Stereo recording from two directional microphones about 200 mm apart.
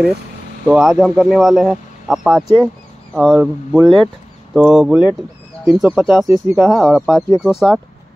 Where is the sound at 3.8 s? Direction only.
25° right (ahead or behind).